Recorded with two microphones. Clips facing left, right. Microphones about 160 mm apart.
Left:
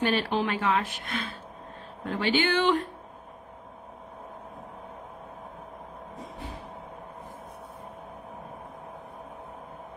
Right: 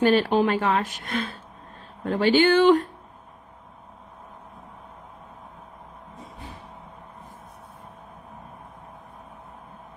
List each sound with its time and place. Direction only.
0.0 s speech: 40° right (ahead or behind)